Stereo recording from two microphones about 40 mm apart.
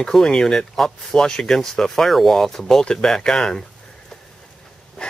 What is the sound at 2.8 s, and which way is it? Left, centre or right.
Speech, centre.